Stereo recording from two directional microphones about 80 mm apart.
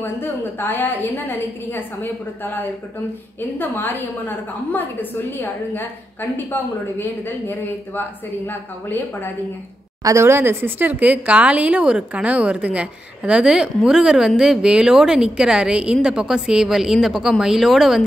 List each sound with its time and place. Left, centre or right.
0.0 s a woman's voice: left
6.3 s a woman's voice: left
10.0 s speech: right; by 18.0 s centre